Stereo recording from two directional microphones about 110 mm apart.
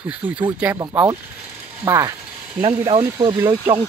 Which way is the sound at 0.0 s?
10° right (ahead or behind).